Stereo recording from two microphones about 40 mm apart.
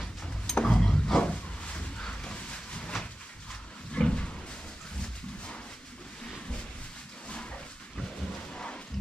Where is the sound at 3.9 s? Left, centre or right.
Left.